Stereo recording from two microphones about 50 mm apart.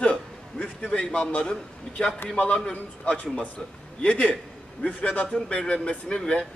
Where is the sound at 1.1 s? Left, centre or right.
Left.